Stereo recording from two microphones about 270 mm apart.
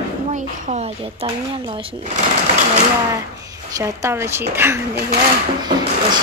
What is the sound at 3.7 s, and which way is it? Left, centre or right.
Speech, centre.